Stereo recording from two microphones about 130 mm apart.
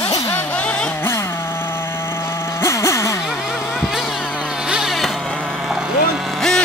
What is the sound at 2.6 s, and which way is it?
Vehicle, 20° left (ahead or behind).